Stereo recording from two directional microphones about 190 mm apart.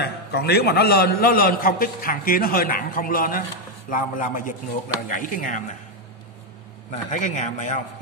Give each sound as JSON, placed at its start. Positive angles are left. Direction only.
{"t": 0.0, "sound": "a man's voice", "side_deg": 60}
{"t": 6.9, "sound": "a man's voice", "side_deg": 40}